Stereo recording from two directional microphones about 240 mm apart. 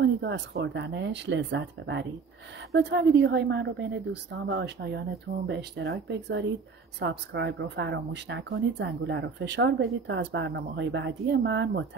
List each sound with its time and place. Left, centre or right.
0.0 s speech: right